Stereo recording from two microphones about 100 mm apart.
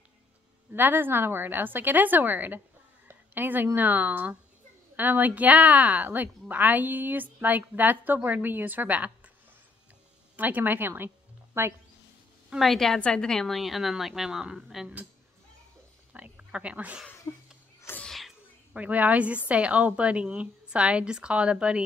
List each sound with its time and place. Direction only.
0.7 s a woman's voice: 20° right (ahead or behind)
10.3 s a woman's voice: 15° right (ahead or behind)
12.4 s a woman's voice: centre (ahead or behind)
16.1 s speech: 10° right (ahead or behind)
17.3 s speech: 40° left (ahead or behind)
18.0 s a sound: centre (ahead or behind)
18.7 s a woman's voice: 15° right (ahead or behind)